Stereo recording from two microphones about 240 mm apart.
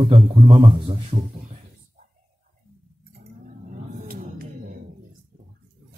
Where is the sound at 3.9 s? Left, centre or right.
Right.